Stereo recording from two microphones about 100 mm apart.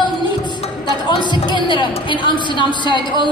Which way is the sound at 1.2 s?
50° left (ahead or behind).